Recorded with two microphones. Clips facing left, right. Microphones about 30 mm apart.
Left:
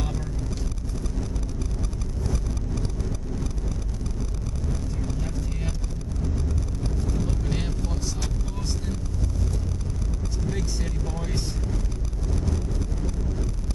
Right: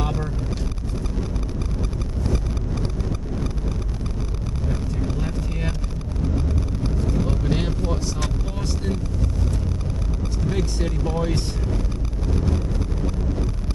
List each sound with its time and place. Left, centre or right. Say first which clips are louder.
2.2 s vehicle: right 4 dB; right
4.6 s vehicle: right 5 dB; right
10.5 s vehicle: right 8 dB; right